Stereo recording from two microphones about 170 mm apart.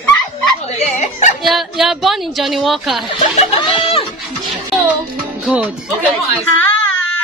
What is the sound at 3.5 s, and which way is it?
Speech, 35° left (ahead or behind).